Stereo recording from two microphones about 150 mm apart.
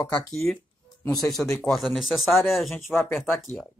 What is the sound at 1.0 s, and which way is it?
Speech, 25° left (ahead or behind).